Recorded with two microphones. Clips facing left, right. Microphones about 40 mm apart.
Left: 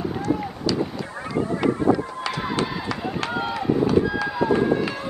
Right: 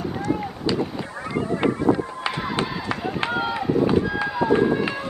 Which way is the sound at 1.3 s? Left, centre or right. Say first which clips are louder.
Even; right.